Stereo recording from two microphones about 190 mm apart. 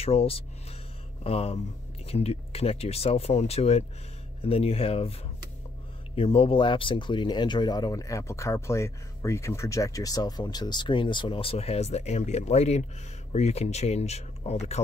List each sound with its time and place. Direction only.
0.0 s speech: 30° left (ahead or behind)
6.1 s speech: 30° left (ahead or behind)